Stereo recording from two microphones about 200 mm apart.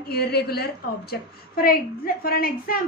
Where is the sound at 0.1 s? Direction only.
50° left (ahead or behind).